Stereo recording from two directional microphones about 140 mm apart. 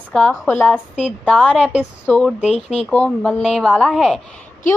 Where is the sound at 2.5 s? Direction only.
50° left (ahead or behind).